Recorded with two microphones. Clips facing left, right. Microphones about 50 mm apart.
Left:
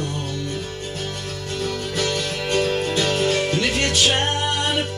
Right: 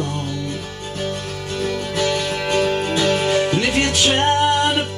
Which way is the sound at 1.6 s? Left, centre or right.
Right.